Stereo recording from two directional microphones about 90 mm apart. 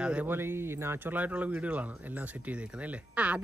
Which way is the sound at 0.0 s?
10° right (ahead or behind).